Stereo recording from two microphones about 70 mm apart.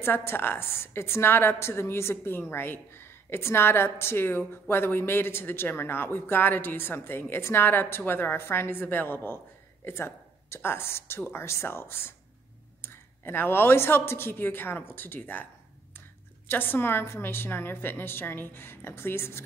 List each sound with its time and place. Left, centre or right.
0.0 s a woman's voice: left
16.4 s a woman's voice: left